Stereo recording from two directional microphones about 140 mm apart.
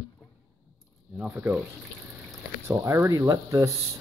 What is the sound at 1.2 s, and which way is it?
Speech, 10° right (ahead or behind).